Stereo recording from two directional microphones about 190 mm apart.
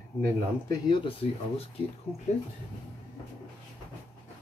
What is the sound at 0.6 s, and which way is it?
Speech, 25° left (ahead or behind).